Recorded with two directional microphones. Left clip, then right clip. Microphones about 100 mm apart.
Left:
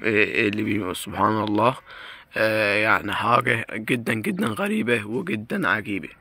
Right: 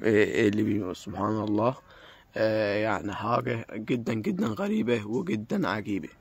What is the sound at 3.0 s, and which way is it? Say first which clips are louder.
Speech: left 8 dB; 5° left (ahead or behind).